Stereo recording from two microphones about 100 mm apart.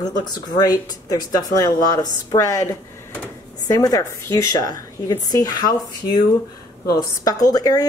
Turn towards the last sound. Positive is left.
turn(degrees=40)  # may be behind; listen again after turning